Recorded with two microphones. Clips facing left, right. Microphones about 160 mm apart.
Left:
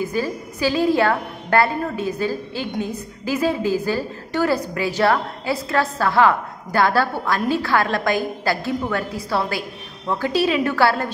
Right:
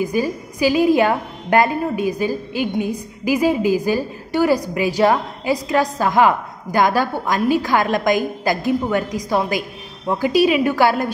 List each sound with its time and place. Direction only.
0.0 s a woman's voice: 15° right (ahead or behind)